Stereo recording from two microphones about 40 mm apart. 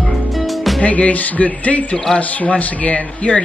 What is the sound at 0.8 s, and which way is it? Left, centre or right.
Speech, left.